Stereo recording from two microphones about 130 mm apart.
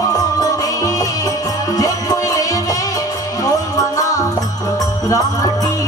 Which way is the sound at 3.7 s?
25° left (ahead or behind).